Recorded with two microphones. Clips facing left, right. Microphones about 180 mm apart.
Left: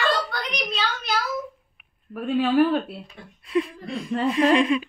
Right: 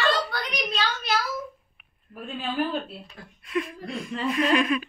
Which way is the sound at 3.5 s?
30° left (ahead or behind).